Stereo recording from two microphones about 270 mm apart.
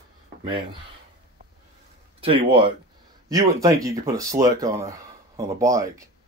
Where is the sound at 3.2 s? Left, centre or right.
Centre.